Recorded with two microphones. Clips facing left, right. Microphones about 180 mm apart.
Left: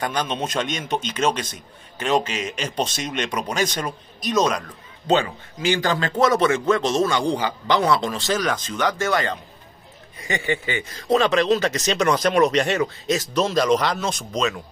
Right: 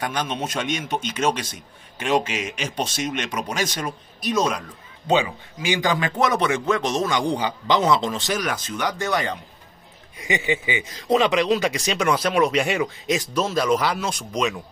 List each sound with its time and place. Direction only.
0.0 s a man's voice: 10° right (ahead or behind)